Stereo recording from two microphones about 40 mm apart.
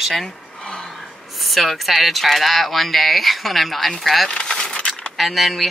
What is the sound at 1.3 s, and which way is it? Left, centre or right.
Speech, centre.